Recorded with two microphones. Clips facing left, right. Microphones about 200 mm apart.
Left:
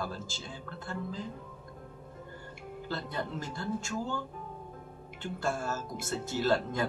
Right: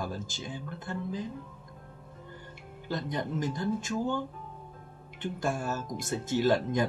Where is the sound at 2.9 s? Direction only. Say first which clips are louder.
Right 4 dB; 15° right (ahead or behind).